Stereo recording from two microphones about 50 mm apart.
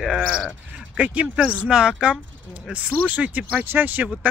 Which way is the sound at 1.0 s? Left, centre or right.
Right.